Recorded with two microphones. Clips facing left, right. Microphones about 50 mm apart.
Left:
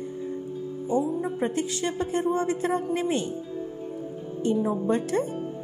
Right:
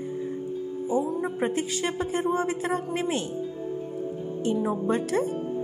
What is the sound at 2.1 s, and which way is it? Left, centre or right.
Speech, centre.